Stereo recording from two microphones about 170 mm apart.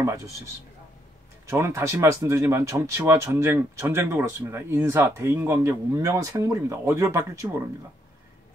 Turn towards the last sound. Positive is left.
turn(degrees=-15)  # may be behind; listen again after turning